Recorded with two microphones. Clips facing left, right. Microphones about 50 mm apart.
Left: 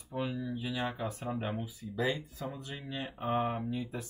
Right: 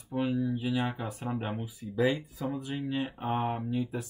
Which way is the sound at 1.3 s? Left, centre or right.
Centre.